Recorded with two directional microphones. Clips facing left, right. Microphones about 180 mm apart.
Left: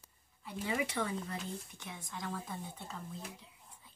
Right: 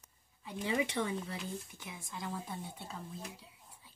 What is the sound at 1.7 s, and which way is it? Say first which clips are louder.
Speech: even; 10° right (ahead or behind).